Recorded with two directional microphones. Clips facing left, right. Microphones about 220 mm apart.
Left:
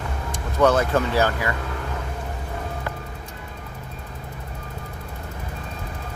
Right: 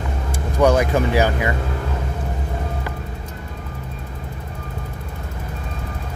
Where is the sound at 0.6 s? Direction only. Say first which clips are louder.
Right 2 dB; 10° right (ahead or behind).